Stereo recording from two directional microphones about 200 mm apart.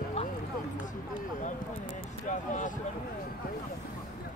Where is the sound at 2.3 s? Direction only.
40° left (ahead or behind).